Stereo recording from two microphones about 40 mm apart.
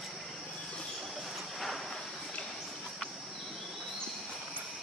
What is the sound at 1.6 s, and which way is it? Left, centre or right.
Vehicle, centre.